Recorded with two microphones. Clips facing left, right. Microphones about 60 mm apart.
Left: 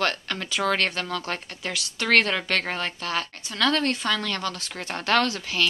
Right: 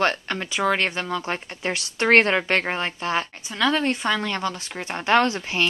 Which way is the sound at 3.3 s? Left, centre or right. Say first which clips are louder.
Right 2 dB; centre.